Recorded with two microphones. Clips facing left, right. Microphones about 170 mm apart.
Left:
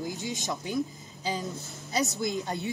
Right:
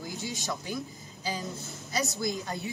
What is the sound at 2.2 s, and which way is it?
Speech, 20° left (ahead or behind).